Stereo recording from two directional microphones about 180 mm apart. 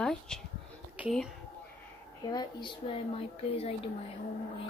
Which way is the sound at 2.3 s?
25° left (ahead or behind).